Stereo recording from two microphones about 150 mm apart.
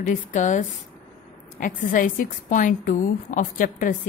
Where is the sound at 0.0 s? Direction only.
60° left (ahead or behind).